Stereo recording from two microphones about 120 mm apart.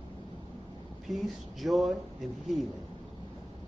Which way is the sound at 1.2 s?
Centre (ahead or behind).